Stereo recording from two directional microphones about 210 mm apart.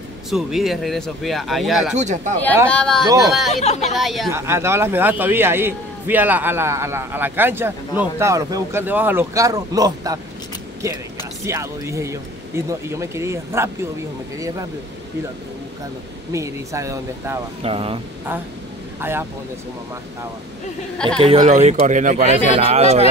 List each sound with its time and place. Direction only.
0.3 s speech: centre (ahead or behind)
2.0 s speech: 35° right (ahead or behind)
2.7 s speech: 5° left (ahead or behind)
3.6 s speech: 30° left (ahead or behind)
3.9 s speech: centre (ahead or behind)
4.3 s a man's voice: 10° right (ahead or behind)
11.4 s a man's voice: 15° right (ahead or behind)
16.3 s a man's voice: 15° right (ahead or behind)
17.6 s speech: 25° right (ahead or behind)
18.9 s speech: 10° right (ahead or behind)
21.2 s speech: 30° right (ahead or behind)